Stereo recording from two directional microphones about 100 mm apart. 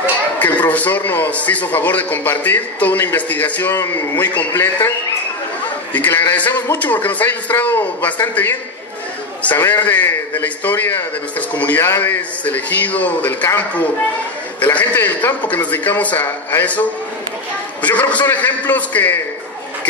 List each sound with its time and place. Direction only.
0.4 s a man's voice: 15° left (ahead or behind)
5.9 s a man's voice: 20° left (ahead or behind)
14.6 s a man's voice: 15° left (ahead or behind)
17.8 s a man's voice: 15° left (ahead or behind)